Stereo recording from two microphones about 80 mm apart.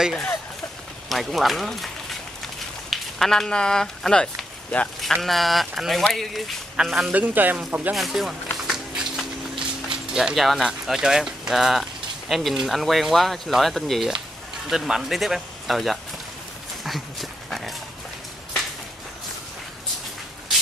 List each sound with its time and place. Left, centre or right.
1.0 s speech: centre
2.9 s speech: centre
5.0 s speech: centre
7.1 s speech: right
7.9 s speech: centre
16.8 s dog: centre